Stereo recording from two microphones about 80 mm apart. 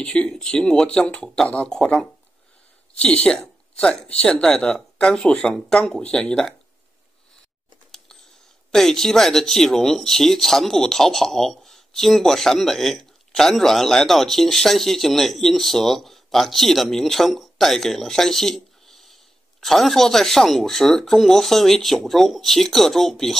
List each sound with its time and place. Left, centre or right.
0.0 s a woman's voice: centre
7.9 s a sound: centre
8.7 s speech: centre